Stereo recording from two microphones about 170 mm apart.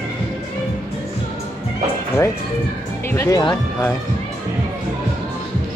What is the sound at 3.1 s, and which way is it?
Speech, 20° left (ahead or behind).